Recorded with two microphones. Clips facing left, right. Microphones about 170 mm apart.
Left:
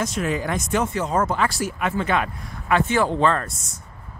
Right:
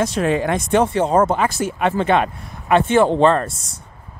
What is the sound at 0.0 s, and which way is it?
Speech, 30° right (ahead or behind).